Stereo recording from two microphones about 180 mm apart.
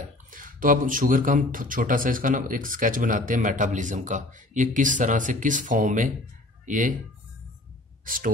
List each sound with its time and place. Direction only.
0.3 s speech: 50° right (ahead or behind)
8.0 s speech: 50° right (ahead or behind)